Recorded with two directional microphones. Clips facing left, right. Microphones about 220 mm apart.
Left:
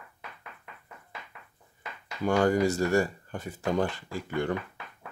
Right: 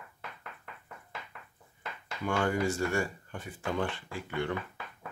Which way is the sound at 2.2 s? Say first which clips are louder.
Left 6 dB; 40° left (ahead or behind).